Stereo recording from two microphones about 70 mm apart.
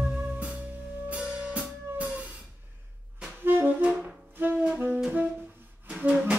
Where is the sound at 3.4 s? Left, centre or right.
Right.